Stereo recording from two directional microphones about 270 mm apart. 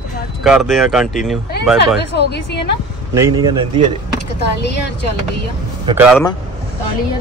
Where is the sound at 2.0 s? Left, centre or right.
Left.